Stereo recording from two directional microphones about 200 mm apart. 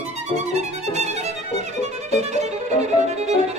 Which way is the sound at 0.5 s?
35° right (ahead or behind).